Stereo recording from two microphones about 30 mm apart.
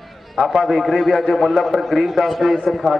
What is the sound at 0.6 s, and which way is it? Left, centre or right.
A man's voice, centre.